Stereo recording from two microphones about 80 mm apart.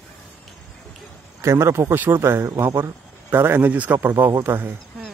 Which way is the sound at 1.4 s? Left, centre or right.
Right.